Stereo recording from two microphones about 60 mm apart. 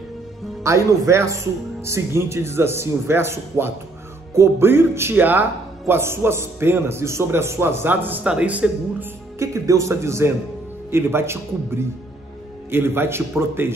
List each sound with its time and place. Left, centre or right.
0.7 s speech: right
5.2 s speech: right
5.9 s speech: right
8.3 s speech: right
9.4 s speech: right
10.9 s a man's voice: right